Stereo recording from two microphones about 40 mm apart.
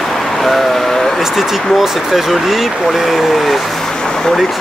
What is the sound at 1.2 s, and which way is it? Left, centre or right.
Speech, centre.